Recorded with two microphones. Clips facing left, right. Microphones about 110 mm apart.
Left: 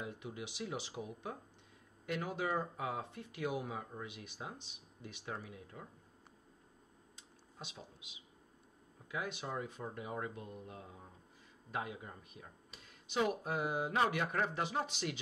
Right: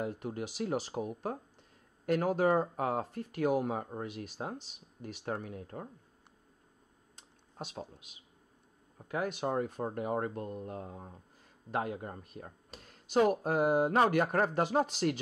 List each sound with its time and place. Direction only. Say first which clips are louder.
0.0 s speech: right 8 dB; 45° right (ahead or behind)
7.2 s computer keyboard: right 8 dB; 50° right (ahead or behind)
9.1 s speech: right 8 dB; 50° right (ahead or behind)